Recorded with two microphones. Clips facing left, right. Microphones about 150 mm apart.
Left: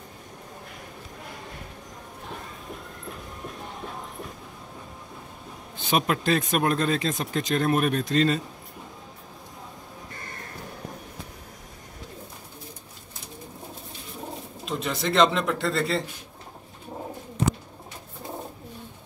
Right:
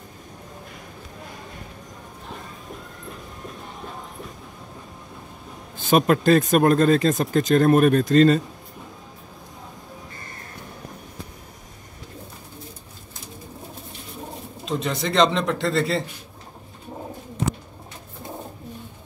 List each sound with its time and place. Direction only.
5.9 s speech: 45° right (ahead or behind)
14.6 s a man's voice: centre (ahead or behind)